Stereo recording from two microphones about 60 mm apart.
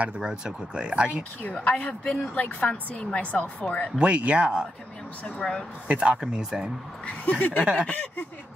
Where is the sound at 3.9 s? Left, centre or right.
Centre.